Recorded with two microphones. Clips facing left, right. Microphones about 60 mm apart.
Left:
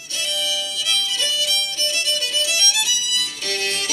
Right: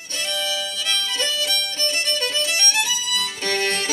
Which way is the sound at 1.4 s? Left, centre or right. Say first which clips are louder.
Even; right.